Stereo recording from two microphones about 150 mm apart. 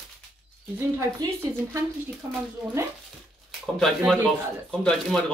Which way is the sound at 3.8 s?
Centre (ahead or behind).